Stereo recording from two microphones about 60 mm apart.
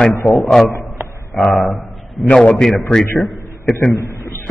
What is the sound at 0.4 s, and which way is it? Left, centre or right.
A man's voice, centre.